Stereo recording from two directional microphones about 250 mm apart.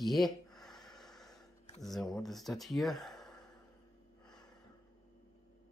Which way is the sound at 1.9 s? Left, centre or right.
Centre.